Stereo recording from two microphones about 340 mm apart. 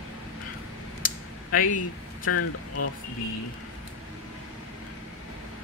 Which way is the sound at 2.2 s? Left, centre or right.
Left.